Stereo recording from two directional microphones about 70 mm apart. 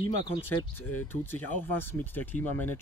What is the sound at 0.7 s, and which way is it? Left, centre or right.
Speech, left.